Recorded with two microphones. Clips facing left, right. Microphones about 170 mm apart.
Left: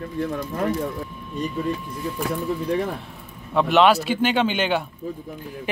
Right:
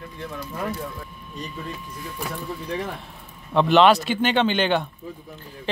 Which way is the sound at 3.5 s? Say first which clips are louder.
Right 1 dB; centre (ahead or behind).